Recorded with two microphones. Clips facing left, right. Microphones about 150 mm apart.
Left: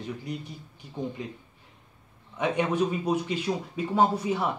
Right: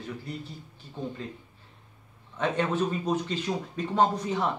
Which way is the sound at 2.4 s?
10° left (ahead or behind).